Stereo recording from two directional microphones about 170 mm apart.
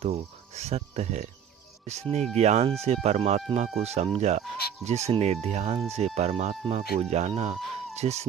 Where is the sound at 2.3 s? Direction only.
40° right (ahead or behind).